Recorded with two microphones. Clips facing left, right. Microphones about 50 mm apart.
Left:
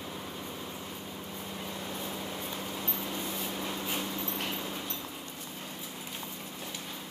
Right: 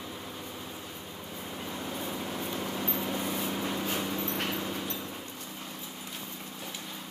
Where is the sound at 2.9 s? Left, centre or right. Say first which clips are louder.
Right 4 dB; right.